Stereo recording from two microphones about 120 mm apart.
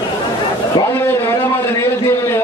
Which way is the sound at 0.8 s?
20° left (ahead or behind).